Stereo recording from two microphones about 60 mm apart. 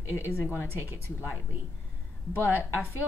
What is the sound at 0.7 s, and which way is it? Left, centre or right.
Speech, right.